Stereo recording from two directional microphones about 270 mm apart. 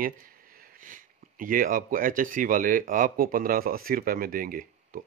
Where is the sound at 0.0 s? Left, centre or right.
Right.